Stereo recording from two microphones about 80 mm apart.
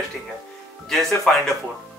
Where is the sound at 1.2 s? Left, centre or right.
Centre.